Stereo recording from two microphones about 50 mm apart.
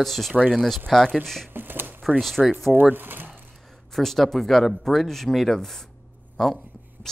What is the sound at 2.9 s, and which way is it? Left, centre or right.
Speech, right.